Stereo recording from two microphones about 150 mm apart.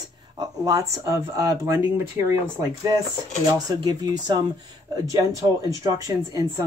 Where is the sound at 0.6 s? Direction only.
20° right (ahead or behind).